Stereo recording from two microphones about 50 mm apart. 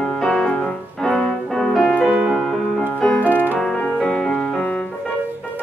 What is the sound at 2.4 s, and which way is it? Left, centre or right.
Music, centre.